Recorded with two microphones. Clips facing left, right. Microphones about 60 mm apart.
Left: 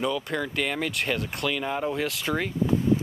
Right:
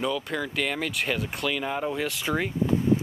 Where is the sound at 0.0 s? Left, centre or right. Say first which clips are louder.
Left 1 dB; centre.